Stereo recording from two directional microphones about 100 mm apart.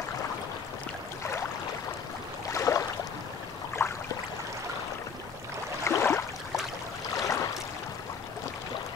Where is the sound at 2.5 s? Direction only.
30° left (ahead or behind).